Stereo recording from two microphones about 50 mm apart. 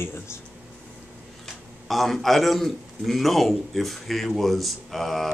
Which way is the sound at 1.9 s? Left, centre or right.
Centre.